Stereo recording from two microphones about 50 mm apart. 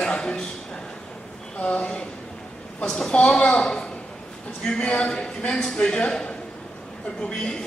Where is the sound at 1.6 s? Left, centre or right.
Left.